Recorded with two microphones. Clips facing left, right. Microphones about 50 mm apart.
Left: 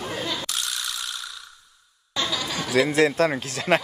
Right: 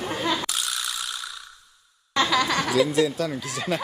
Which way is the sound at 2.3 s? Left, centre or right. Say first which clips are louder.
Right 6 dB; right.